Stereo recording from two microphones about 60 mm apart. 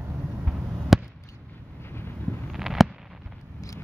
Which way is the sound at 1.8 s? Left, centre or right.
Left.